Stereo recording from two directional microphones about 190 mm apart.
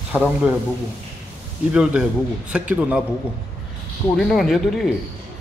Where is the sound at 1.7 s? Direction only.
5° right (ahead or behind).